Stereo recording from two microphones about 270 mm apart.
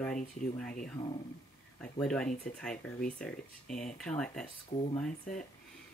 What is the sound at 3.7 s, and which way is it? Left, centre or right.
Speech, left.